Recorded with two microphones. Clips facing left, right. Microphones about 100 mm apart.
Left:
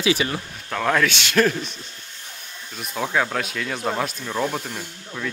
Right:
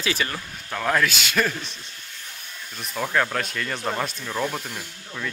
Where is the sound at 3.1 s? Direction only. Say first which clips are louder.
Even; 5° left (ahead or behind).